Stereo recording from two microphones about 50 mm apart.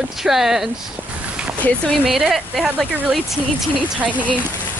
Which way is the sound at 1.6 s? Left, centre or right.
Left.